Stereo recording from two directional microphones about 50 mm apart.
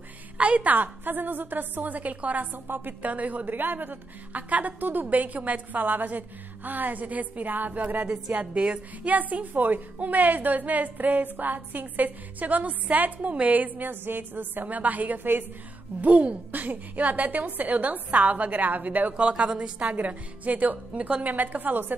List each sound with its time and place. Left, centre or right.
0.4 s a woman's voice: right
16.0 s a woman's voice: right
19.9 s a woman's voice: right